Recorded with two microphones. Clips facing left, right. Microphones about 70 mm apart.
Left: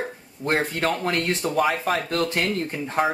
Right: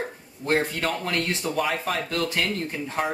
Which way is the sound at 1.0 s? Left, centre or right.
Left.